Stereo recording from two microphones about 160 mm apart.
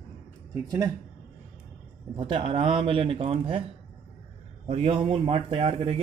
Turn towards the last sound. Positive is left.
turn(degrees=-40)  # may be behind; listen again after turning